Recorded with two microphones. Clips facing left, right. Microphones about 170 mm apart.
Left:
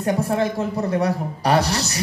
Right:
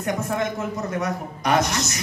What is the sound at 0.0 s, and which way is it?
Speech, 30° left (ahead or behind).